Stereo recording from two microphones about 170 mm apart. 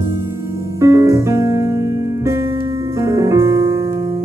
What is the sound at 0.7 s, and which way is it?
Music, 15° right (ahead or behind).